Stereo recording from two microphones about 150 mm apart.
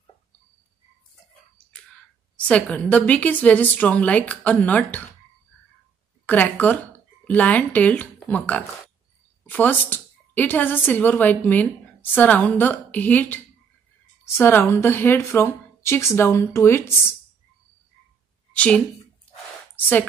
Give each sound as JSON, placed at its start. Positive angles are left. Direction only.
{"t": 2.3, "sound": "a woman's voice", "side_deg": 10}
{"t": 6.2, "sound": "a woman's voice", "side_deg": 10}
{"t": 18.5, "sound": "a woman's voice", "side_deg": 10}